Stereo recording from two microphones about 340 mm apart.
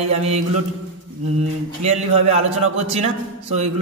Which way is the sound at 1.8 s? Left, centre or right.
Centre.